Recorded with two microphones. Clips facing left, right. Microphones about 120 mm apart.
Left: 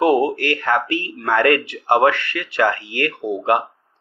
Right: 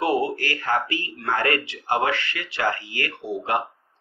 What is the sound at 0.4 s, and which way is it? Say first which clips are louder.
A man's voice: left 5 dB; 60° left (ahead or behind).